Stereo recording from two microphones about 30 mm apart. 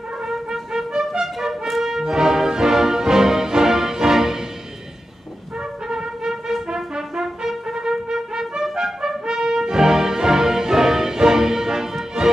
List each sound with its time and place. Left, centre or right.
0.5 s music: centre
5.9 s music: centre
6.7 s brass instrument: centre
8.7 s trumpet: centre
9.2 s music: right